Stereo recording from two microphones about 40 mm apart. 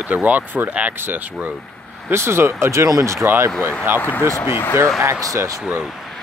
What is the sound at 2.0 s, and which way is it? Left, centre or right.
Speech, right.